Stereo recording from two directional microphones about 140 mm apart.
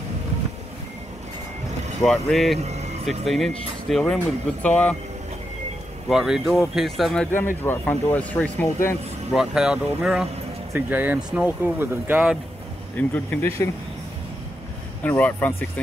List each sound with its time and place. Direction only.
2.0 s speech: centre (ahead or behind)
2.6 s vehicle: 55° right (ahead or behind)
3.1 s speech: centre (ahead or behind)
6.0 s speech: 5° right (ahead or behind)
7.3 s speech: 15° left (ahead or behind)
9.3 s speech: 5° right (ahead or behind)
12.9 s speech: 10° left (ahead or behind)
15.0 s speech: 10° left (ahead or behind)